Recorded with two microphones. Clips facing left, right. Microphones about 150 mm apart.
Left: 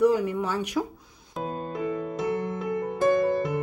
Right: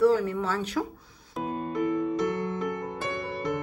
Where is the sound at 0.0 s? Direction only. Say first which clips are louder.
Even; 15° left (ahead or behind).